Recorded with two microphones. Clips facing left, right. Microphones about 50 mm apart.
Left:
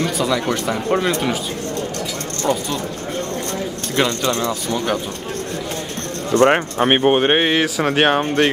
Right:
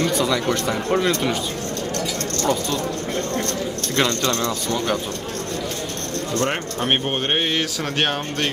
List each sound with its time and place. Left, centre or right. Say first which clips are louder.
0.0 s speech: left 1 dB; centre
2.4 s speech: left 2 dB; centre
3.9 s speech: left 2 dB; centre
6.3 s speech: left 10 dB; left